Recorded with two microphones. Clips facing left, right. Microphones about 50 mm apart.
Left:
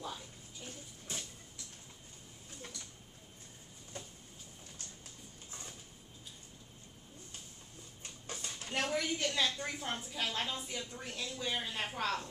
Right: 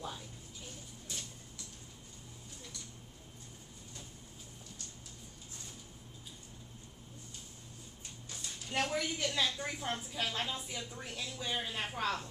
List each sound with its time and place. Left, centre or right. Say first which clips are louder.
1.1 s vehicle: left 2 dB; left
8.3 s a sound: left 3 dB; left
8.9 s a woman's voice: left 1 dB; centre